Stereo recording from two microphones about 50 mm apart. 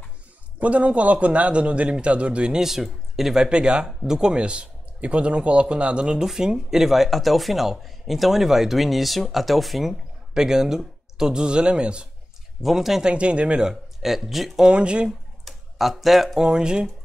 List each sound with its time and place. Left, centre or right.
0.6 s a man's voice: right
2.6 s speech: centre
3.4 s a man's voice: centre
10.3 s speech: centre
12.6 s speech: centre
13.0 s speech: right; by 14.7 s centre
14.7 s a man's voice: right
15.0 s a sound: centre
16.4 s speech: centre